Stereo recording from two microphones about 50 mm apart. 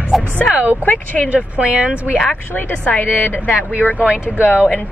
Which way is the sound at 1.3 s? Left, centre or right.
Right.